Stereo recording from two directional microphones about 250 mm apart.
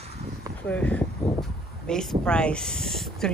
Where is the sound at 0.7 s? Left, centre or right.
Centre.